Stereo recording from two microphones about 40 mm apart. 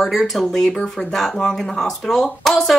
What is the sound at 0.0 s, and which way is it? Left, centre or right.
Speech, centre.